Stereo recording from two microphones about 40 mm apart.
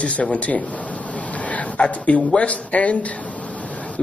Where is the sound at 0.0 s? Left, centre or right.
Left.